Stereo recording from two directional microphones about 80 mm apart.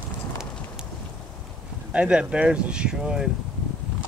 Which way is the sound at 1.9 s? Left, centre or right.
Centre.